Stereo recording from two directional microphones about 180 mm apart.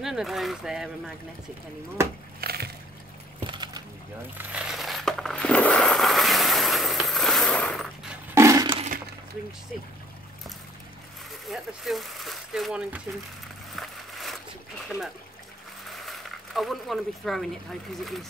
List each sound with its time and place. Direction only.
0.0 s speech: centre (ahead or behind)
2.4 s boat: 60° right (ahead or behind)
3.3 s music: 25° right (ahead or behind)
4.4 s coin: 5° right (ahead or behind)
8.4 s breaking: 15° right (ahead or behind)
11.4 s speech: centre (ahead or behind)
13.7 s a sound: centre (ahead or behind)
15.9 s speech: centre (ahead or behind)